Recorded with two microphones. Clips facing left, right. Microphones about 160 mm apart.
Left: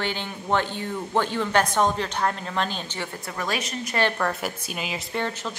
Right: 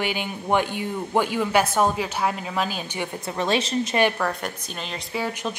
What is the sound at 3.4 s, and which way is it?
Speech, 25° right (ahead or behind).